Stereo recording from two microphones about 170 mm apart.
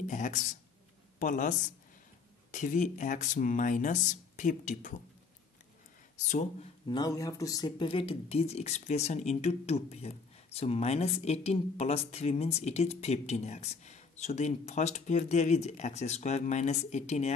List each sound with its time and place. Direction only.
0.0 s speech: 45° left (ahead or behind)
2.5 s speech: 50° left (ahead or behind)
6.2 s speech: 45° left (ahead or behind)
6.9 s speech: 20° left (ahead or behind)
7.9 s speech: 35° left (ahead or behind)